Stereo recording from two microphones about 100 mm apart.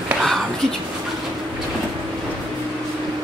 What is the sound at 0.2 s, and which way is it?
Whispering, 5° left (ahead or behind).